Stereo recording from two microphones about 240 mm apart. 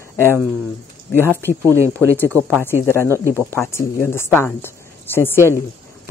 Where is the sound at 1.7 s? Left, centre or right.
Centre.